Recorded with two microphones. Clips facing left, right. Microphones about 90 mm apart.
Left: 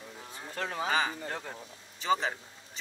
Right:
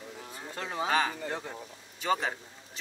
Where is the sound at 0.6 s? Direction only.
15° right (ahead or behind).